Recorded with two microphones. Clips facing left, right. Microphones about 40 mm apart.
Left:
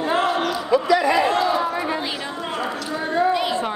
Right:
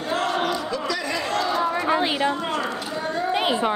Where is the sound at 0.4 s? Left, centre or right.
Centre.